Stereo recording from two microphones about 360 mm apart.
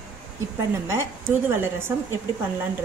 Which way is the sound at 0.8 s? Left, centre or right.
Centre.